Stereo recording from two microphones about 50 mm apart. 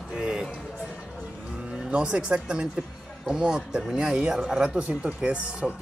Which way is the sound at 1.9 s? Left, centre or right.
Centre.